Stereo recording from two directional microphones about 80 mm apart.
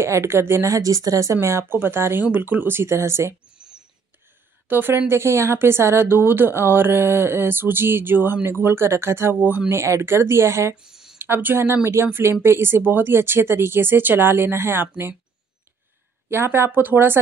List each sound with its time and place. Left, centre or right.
0.0 s speech: right
3.5 s a sound: centre
4.6 s speech: right
9.7 s speech: right
10.9 s a sound: centre
11.1 s speech: right
16.3 s speech: right